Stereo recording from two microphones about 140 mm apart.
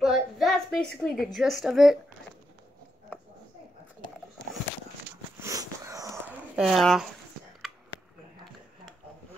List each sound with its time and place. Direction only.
0.0 s a woman's voice: centre (ahead or behind)
5.4 s wheeze: 20° right (ahead or behind)
6.5 s speech: centre (ahead or behind)